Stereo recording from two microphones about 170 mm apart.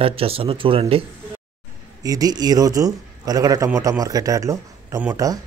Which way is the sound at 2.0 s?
20° right (ahead or behind).